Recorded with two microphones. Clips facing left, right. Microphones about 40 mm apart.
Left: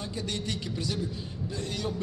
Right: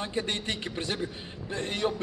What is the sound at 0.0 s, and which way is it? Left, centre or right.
A man's voice, right.